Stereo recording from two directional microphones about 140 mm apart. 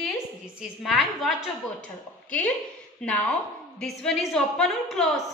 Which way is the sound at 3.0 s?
5° left (ahead or behind).